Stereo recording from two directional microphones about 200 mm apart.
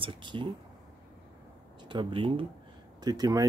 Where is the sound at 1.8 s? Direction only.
25° right (ahead or behind).